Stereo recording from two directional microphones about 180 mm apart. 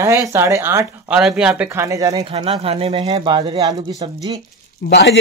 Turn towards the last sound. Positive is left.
turn(degrees=80)